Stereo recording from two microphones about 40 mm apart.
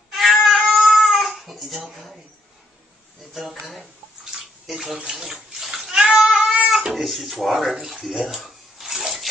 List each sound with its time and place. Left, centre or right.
0.1 s cat: centre
1.0 s babbling: centre
1.9 s speech: centre
3.6 s bathtub: centre
6.1 s cat: centre
6.7 s speech: centre
8.0 s bathtub: centre